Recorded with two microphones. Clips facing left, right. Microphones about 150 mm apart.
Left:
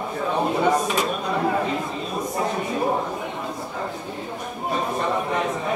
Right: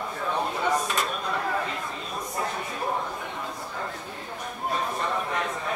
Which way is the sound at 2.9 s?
30° left (ahead or behind).